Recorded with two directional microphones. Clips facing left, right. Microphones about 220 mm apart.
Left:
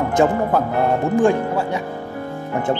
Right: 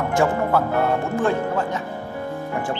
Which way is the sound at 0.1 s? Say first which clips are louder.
Left 2 dB; 20° left (ahead or behind).